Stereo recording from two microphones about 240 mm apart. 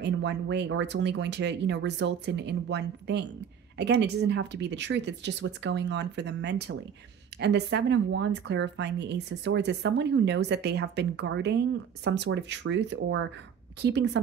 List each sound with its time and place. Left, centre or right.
0.0 s speech: right